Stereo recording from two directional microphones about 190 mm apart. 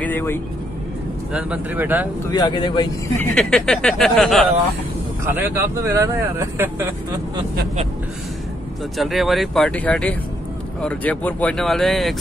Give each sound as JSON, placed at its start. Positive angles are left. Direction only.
{"t": 0.0, "sound": "speech", "side_deg": 10}
{"t": 1.3, "sound": "speech", "side_deg": -10}
{"t": 2.3, "sound": "a man's voice", "side_deg": 20}
{"t": 3.2, "sound": "speech", "side_deg": 5}
{"t": 5.2, "sound": "speech", "side_deg": -15}
{"t": 8.9, "sound": "speech", "side_deg": 0}